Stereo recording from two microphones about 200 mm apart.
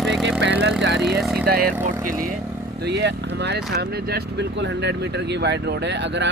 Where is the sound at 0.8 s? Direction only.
55° right (ahead or behind).